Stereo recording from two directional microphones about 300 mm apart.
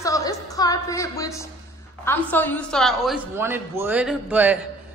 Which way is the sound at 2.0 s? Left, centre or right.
Centre.